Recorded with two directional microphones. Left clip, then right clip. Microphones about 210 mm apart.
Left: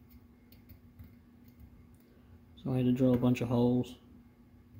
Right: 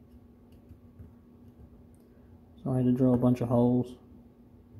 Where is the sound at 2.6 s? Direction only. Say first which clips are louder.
Right 3 dB; centre (ahead or behind).